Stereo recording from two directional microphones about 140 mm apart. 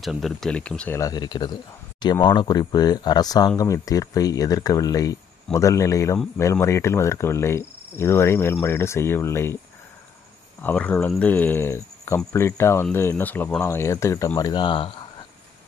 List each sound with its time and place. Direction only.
0.0 s speech: centre (ahead or behind)
0.9 s speech: 25° left (ahead or behind)
10.6 s speech: 10° left (ahead or behind); by 15.0 s 35° left (ahead or behind)